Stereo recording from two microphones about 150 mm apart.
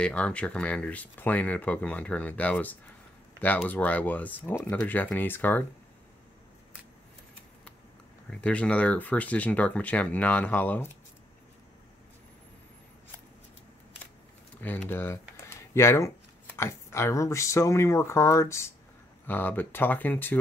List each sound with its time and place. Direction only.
0.0 s speech: 10° left (ahead or behind)
8.3 s speech: 10° left (ahead or behind)
14.6 s speech: 10° left (ahead or behind)